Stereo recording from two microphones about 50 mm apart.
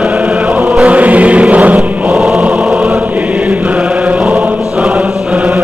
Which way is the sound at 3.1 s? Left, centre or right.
Centre.